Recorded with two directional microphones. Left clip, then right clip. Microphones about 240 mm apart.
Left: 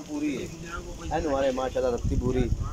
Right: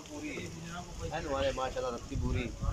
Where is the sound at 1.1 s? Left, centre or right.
Left.